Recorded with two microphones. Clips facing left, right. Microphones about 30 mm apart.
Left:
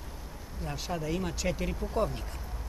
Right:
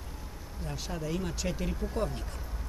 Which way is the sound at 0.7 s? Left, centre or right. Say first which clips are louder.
Left 2 dB; centre.